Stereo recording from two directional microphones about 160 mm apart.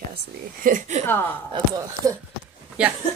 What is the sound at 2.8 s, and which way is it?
Speech, 5° right (ahead or behind).